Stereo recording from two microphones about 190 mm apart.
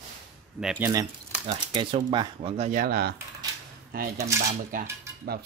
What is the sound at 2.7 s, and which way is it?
Speech, 50° right (ahead or behind).